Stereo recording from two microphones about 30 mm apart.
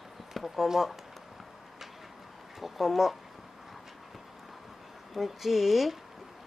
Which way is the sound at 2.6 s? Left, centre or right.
Centre.